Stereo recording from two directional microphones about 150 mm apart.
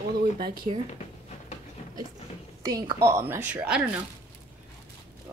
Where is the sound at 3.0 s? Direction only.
15° right (ahead or behind).